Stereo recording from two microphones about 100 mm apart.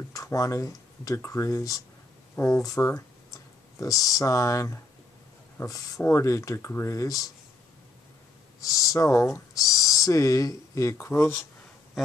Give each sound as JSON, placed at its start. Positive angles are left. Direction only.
{"t": 0.1, "sound": "speech", "side_deg": 35}
{"t": 8.5, "sound": "speech", "side_deg": 35}